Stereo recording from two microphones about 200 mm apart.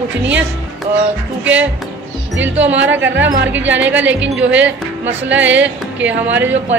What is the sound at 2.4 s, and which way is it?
Speech, 10° right (ahead or behind).